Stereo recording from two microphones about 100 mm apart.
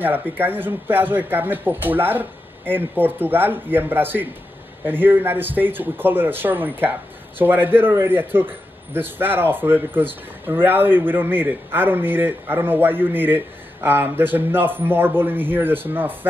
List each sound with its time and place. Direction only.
0.0 s speech: 20° right (ahead or behind)